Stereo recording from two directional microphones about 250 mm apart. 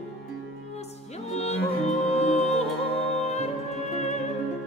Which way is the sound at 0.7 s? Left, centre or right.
Left.